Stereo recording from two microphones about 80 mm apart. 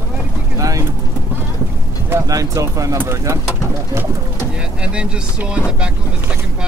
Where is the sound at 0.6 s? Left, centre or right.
Right.